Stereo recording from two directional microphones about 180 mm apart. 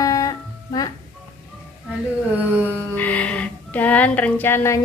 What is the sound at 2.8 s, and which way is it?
Speech, 10° left (ahead or behind).